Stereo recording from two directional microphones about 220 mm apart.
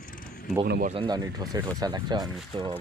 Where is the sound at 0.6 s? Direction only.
45° right (ahead or behind).